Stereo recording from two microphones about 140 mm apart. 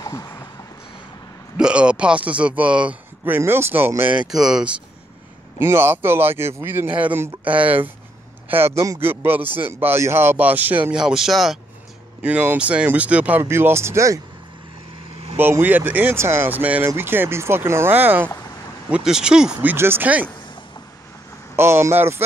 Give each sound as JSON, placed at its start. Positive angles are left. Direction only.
{"t": 0.0, "sound": "a sound", "side_deg": 25}
{"t": 1.6, "sound": "speech", "side_deg": -10}
{"t": 5.6, "sound": "speech", "side_deg": -15}
{"t": 15.3, "sound": "speech", "side_deg": -15}
{"t": 21.5, "sound": "speech", "side_deg": -20}